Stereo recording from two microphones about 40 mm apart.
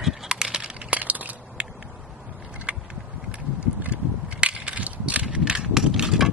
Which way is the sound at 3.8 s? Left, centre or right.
Right.